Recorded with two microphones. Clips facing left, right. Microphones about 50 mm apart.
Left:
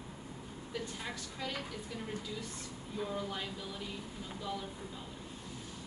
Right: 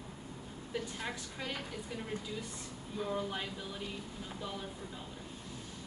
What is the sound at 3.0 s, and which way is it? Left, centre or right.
Speech, centre.